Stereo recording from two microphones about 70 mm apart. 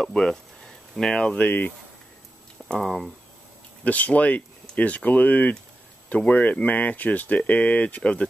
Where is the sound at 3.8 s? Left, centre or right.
Left.